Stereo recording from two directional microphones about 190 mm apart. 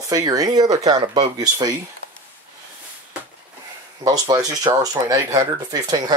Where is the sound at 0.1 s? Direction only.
20° right (ahead or behind).